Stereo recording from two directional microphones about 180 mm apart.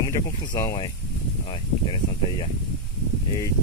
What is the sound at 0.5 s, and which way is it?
Speech, 20° left (ahead or behind).